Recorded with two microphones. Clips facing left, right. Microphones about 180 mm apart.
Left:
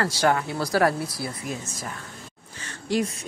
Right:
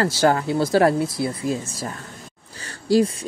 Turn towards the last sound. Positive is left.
turn(degrees=-30)  # may be behind; listen again after turning